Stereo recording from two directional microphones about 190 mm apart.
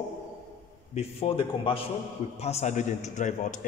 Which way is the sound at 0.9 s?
30° left (ahead or behind).